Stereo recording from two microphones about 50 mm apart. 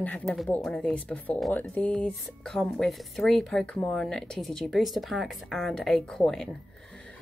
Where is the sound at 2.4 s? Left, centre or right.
Centre.